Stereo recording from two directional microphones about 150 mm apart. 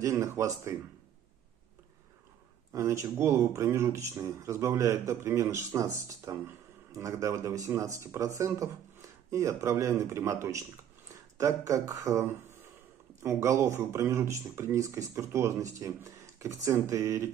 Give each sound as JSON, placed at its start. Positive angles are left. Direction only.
{"t": 0.0, "sound": "speech", "side_deg": -20}
{"t": 2.7, "sound": "speech", "side_deg": -20}